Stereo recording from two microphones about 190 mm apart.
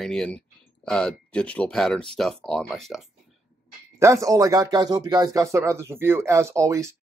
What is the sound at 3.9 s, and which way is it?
A man's voice, 15° right (ahead or behind).